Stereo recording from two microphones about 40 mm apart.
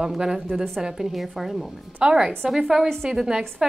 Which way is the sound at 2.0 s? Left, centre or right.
Centre.